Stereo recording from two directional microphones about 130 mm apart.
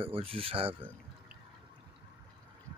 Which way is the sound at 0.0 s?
45° right (ahead or behind).